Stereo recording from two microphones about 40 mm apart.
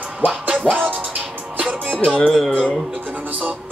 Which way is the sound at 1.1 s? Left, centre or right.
Right.